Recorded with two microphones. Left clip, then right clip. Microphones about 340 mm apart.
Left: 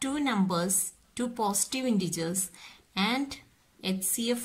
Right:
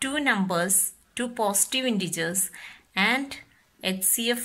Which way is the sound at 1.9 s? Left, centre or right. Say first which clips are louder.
Right 3 dB; centre.